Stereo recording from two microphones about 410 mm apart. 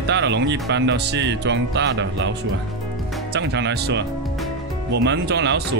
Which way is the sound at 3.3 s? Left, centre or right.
Right.